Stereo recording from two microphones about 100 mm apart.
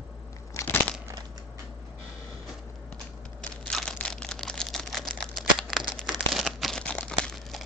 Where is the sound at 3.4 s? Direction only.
5° left (ahead or behind).